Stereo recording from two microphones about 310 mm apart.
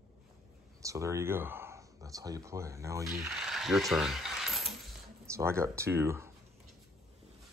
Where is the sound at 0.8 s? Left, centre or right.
Centre.